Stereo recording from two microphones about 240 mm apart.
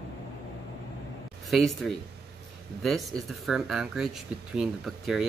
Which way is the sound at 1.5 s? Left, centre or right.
Centre.